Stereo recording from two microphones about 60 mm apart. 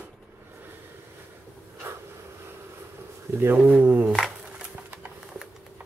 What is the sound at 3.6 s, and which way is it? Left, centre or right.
Speech, right.